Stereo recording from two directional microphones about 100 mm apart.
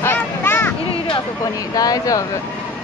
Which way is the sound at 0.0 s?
20° left (ahead or behind).